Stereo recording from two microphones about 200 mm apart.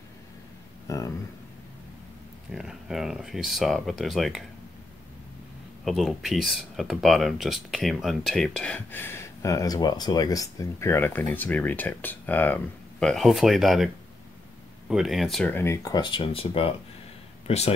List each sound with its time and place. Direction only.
0.8 s a sound: 15° left (ahead or behind)
2.5 s speech: centre (ahead or behind)
5.9 s speech: centre (ahead or behind)
14.9 s speech: centre (ahead or behind); by 17.7 s 30° left (ahead or behind)